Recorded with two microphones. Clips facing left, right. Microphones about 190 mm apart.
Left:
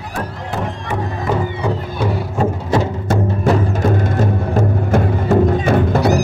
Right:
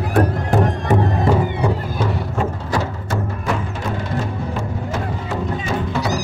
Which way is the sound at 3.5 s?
40° left (ahead or behind).